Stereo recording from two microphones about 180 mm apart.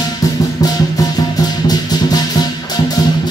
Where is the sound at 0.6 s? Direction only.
20° left (ahead or behind).